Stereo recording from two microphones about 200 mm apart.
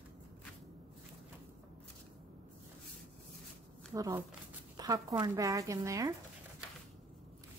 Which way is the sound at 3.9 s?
15° right (ahead or behind).